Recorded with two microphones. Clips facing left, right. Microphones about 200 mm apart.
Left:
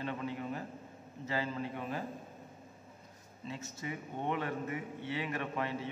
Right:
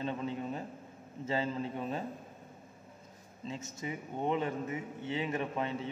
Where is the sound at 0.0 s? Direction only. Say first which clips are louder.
Right 2 dB; 25° right (ahead or behind).